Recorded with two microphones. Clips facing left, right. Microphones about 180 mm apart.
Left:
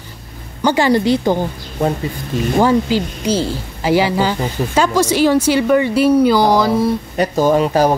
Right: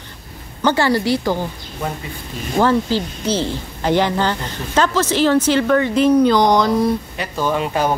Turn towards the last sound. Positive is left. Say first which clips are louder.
# left 6 dB
turn(degrees=40)  # may be behind; listen again after turning